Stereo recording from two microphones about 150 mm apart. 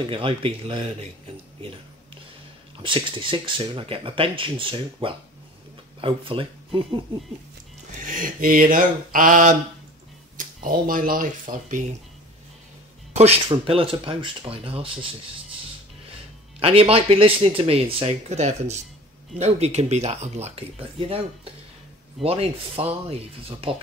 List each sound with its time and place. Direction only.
0.0 s speech: 35° right (ahead or behind)
2.8 s speech: 35° right (ahead or behind)
8.0 s speech: 65° right (ahead or behind)
13.5 s speech: 40° right (ahead or behind)
16.5 s speech: 40° right (ahead or behind)
22.2 s speech: 40° right (ahead or behind)